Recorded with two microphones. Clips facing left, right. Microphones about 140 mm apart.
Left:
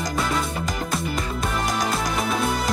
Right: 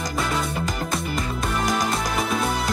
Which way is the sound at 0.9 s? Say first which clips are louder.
Even; centre (ahead or behind).